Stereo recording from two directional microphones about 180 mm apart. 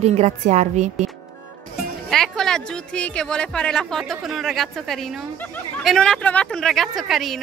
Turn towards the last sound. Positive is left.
turn(degrees=0)  # may be behind; listen again after turning